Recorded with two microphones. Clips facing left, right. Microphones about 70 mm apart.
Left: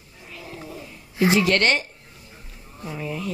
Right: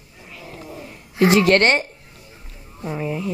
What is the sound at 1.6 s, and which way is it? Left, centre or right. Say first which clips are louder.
Speech: right 4 dB; right.